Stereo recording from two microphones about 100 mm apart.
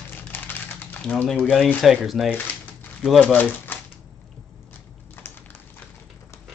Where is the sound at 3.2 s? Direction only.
20° left (ahead or behind).